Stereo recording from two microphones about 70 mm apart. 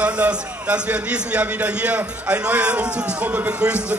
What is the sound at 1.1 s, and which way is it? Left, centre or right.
Speech, centre.